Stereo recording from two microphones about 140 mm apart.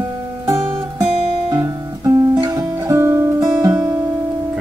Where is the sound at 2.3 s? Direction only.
25° right (ahead or behind).